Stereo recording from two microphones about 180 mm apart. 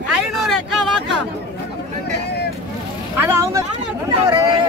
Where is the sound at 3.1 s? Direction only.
15° right (ahead or behind).